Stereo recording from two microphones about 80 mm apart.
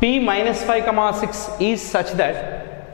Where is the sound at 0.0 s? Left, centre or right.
Centre.